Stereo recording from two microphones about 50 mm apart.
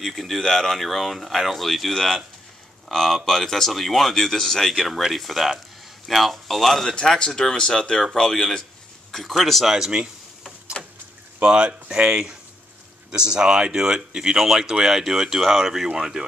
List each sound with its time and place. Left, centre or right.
0.0 s speech: centre
9.7 s speech: centre
10.8 s a sound: centre
11.4 s speech: right